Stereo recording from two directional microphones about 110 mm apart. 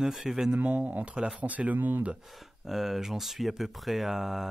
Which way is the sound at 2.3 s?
Centre (ahead or behind).